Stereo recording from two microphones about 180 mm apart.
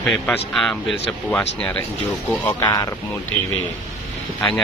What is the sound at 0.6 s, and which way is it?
Speech, 5° left (ahead or behind).